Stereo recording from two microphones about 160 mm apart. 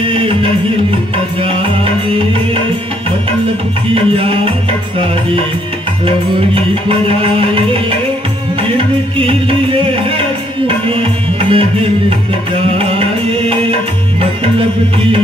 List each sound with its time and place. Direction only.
0.1 s music: 35° right (ahead or behind)
3.9 s music: 35° right (ahead or behind)
6.0 s music: 35° right (ahead or behind)
8.6 s music: 35° right (ahead or behind)